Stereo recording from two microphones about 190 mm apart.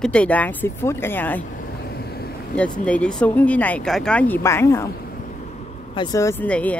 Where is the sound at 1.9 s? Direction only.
55° left (ahead or behind).